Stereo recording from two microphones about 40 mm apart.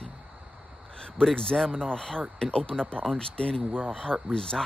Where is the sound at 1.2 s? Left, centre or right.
Centre.